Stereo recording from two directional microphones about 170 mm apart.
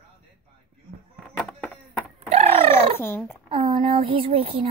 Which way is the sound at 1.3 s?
Centre (ahead or behind).